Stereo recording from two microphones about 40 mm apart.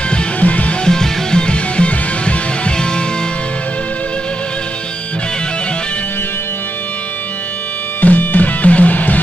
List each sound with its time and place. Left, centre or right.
0.4 s music: left
0.8 s music: centre
8.0 s music: left